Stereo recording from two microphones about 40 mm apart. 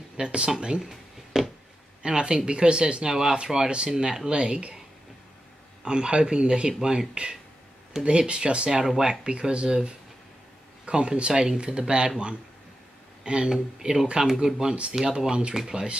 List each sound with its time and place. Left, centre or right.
0.2 s speech: right
1.3 s a sound: centre
2.0 s speech: right
4.3 s speech: right
5.9 s speech: right
8.8 s speech: centre
10.9 s speech: right
13.2 s speech: right